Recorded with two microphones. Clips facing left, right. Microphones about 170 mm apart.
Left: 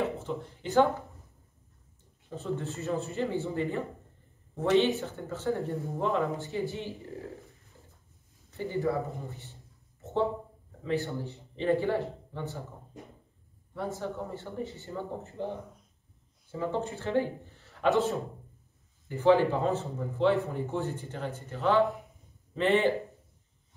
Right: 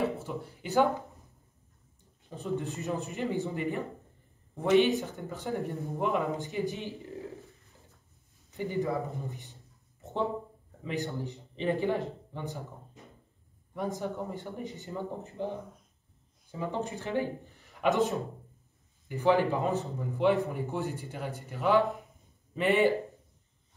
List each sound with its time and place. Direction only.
0.2 s speech: 10° right (ahead or behind)
2.3 s speech: 15° right (ahead or behind)
8.5 s speech: 15° right (ahead or behind)
10.8 s speech: 15° right (ahead or behind)
13.7 s speech: 15° right (ahead or behind)
16.5 s a man's voice: 15° right (ahead or behind)